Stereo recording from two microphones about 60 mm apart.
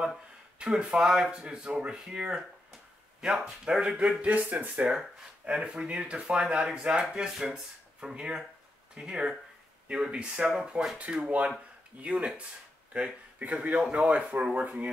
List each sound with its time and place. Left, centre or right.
0.6 s speech: centre
4.2 s speech: right
4.8 s speech: centre